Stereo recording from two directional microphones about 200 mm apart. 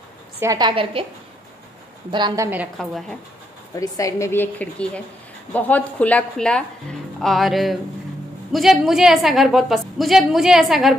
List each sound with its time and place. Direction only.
0.4 s a woman's voice: 20° right (ahead or behind)
2.0 s a woman's voice: 20° right (ahead or behind)
2.8 s a woman's voice: centre (ahead or behind)
3.7 s a woman's voice: 15° left (ahead or behind); by 11.0 s centre (ahead or behind)